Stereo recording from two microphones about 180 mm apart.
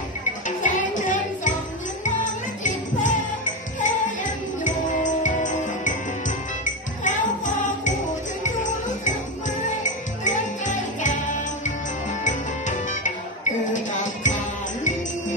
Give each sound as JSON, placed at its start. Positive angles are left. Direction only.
{"t": 0.5, "sound": "music", "side_deg": 45}
{"t": 2.0, "sound": "jingle bell", "side_deg": 45}
{"t": 3.8, "sound": "music", "side_deg": 45}
{"t": 10.2, "sound": "music", "side_deg": 45}